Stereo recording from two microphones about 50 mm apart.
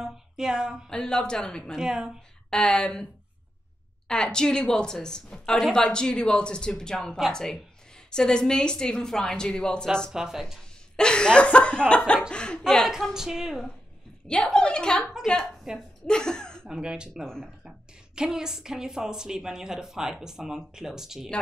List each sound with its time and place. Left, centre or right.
0.0 s a sound: centre
1.0 s a woman's voice: centre
1.8 s a woman's voice: centre
2.5 s a woman's voice: centre
4.1 s a woman's voice: centre
10.1 s a woman's voice: centre
11.0 s chuckle: centre
12.6 s a woman's voice: centre
13.1 s a woman's voice: centre
14.2 s a woman's voice: centre
15.7 s a woman's voice: centre
16.1 s speech: centre
16.7 s a woman's voice: centre
18.1 s a woman's voice: centre